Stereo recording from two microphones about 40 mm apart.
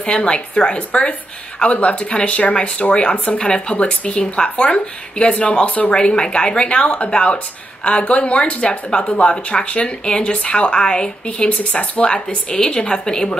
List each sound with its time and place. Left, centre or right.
0.0 s a woman's voice: left
5.9 s a woman's voice: left